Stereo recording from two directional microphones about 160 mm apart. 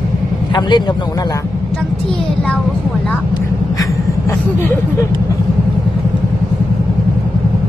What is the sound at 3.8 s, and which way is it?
Vehicle, 15° left (ahead or behind).